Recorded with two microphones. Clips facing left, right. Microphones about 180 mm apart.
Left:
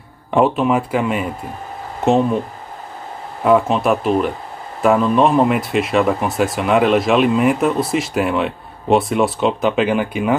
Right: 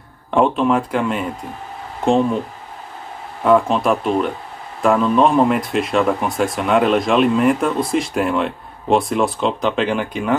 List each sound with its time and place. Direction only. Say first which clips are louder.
0.3 s speech: left 1 dB; 5° left (ahead or behind)
3.4 s speech: even; 5° left (ahead or behind)